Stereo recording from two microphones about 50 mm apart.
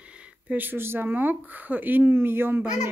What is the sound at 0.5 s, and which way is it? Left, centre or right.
Speech, right.